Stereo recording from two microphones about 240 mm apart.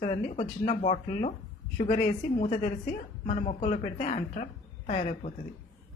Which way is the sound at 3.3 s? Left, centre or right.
Left.